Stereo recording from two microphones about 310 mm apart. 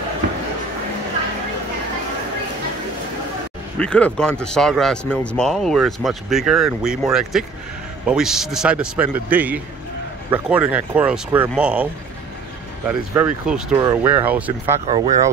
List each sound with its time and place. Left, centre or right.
3.8 s a man's voice: centre
14.9 s speech: centre